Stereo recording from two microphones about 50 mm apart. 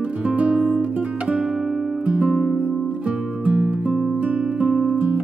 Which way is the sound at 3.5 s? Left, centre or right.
Right.